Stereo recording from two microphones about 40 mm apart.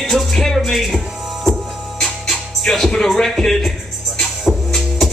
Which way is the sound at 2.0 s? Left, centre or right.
Centre.